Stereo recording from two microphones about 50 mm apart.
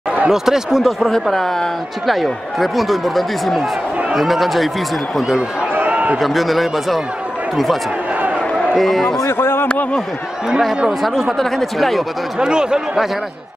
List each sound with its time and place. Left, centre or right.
0.3 s speech: centre
1.2 s speech: centre
5.8 s a sound: right
6.1 s speech: centre
9.3 s speech: left
11.0 s speech: centre
12.4 s speech: centre